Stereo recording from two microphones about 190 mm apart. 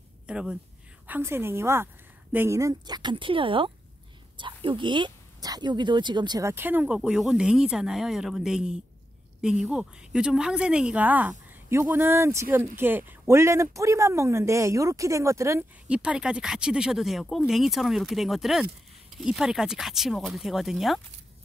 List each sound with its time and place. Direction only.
0.3 s a woman's voice: 5° right (ahead or behind)